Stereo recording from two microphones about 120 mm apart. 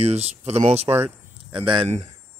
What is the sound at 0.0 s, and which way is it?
Speech, 65° right (ahead or behind).